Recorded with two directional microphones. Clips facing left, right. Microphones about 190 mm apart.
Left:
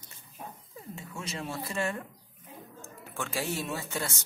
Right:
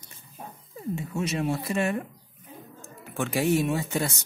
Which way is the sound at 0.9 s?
20° right (ahead or behind).